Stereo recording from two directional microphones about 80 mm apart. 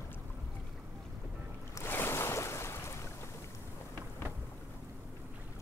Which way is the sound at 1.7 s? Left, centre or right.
Left.